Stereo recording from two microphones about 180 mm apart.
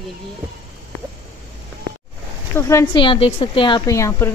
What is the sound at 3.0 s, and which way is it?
A woman's voice, 30° left (ahead or behind).